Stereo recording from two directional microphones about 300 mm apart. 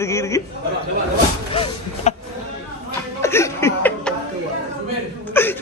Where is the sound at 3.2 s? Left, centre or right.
Centre.